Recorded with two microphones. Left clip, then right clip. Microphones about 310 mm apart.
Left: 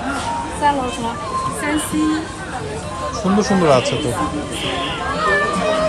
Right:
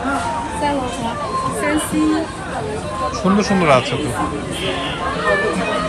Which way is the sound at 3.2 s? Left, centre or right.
Centre.